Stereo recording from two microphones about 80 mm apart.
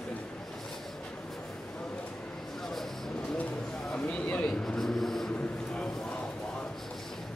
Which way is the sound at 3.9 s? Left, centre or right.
Centre.